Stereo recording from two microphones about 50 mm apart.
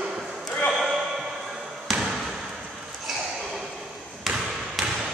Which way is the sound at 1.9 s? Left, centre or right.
Centre.